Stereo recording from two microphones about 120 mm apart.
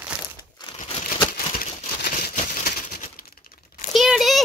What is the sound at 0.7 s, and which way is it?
Crumpling, 60° left (ahead or behind).